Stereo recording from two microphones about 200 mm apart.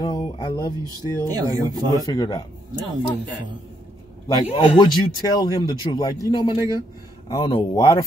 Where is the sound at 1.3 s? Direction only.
20° right (ahead or behind).